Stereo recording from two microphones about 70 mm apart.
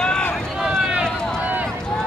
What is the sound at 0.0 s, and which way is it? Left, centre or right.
Run, centre.